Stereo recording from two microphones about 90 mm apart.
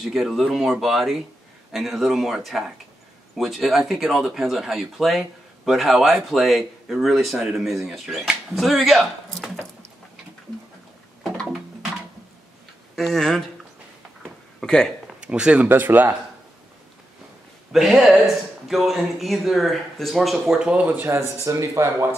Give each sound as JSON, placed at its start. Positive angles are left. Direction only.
{"t": 0.0, "sound": "speech", "side_deg": 0}
{"t": 12.9, "sound": "speech", "side_deg": 5}
{"t": 14.6, "sound": "speech", "side_deg": 5}
{"t": 15.2, "sound": "speech", "side_deg": -10}
{"t": 17.7, "sound": "speech", "side_deg": -5}
{"t": 20.8, "sound": "speech", "side_deg": -20}